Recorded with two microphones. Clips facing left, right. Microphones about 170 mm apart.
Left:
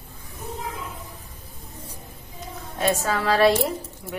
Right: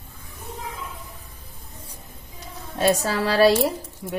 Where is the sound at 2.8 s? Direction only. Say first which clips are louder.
Right 2 dB; 35° right (ahead or behind).